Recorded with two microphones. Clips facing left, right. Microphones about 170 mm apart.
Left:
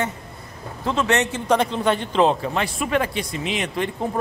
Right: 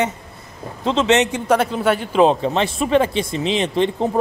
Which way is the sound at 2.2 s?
20° right (ahead or behind).